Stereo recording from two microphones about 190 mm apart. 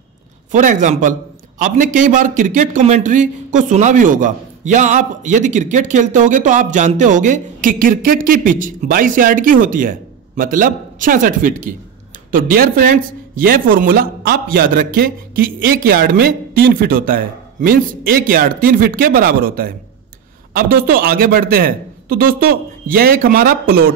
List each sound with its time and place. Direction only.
0.5 s a man's voice: 40° right (ahead or behind)